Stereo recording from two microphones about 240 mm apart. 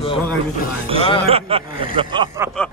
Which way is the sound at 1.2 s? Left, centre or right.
Right.